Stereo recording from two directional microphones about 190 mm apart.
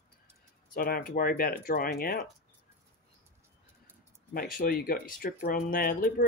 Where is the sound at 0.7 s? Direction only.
50° left (ahead or behind).